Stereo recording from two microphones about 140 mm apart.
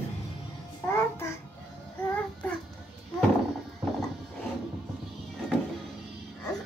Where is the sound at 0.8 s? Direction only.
20° left (ahead or behind).